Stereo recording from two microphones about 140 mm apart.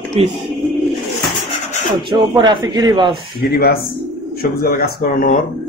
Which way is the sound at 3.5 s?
90° left.